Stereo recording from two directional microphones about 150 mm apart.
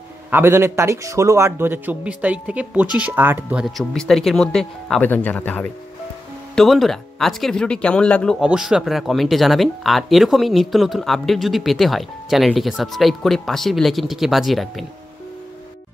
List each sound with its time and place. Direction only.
0.3 s a man's voice: 15° right (ahead or behind); by 8.4 s 5° left (ahead or behind)
8.4 s speech: 5° right (ahead or behind)